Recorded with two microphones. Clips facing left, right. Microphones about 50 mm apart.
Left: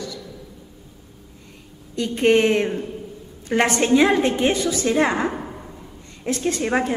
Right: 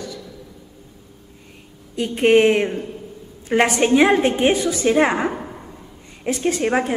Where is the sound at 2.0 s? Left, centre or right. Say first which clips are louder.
Right 3 dB; centre.